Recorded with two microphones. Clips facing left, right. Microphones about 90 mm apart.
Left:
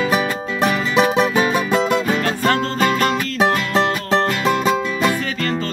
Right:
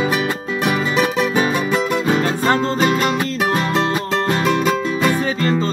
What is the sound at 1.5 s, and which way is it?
Music, 30° left (ahead or behind).